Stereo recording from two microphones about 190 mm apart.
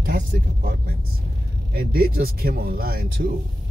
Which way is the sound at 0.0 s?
50° right (ahead or behind).